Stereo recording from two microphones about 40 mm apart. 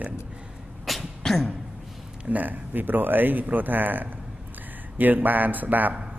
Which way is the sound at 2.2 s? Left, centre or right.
Right.